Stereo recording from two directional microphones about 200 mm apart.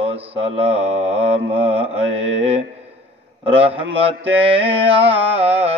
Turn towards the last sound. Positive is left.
turn(degrees=-30)  # may be behind; listen again after turning